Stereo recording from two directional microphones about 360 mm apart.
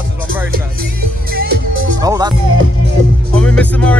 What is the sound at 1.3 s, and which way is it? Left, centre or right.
Speech, right.